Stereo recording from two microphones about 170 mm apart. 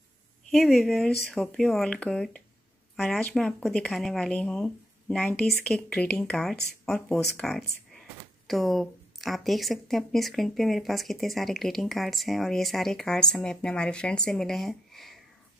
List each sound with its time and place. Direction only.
0.5 s speech: centre (ahead or behind)